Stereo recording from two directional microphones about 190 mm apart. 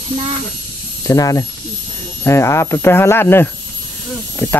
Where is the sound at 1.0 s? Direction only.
15° left (ahead or behind).